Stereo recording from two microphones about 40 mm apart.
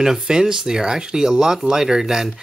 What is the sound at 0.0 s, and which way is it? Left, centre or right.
Speech, centre.